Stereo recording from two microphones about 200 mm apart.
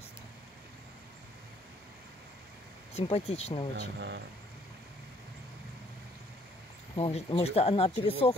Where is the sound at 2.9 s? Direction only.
30° left (ahead or behind).